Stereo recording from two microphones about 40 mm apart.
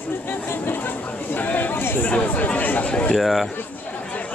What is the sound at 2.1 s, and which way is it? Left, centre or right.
Chatter, left.